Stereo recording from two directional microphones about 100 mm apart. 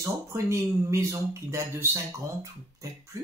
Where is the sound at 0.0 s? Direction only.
30° right (ahead or behind).